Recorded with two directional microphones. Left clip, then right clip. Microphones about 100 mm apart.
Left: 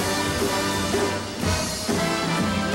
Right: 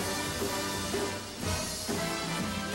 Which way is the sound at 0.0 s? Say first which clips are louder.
Left 9 dB; 10° left (ahead or behind).